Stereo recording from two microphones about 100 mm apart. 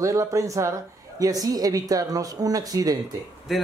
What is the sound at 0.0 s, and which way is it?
Speech, 30° right (ahead or behind).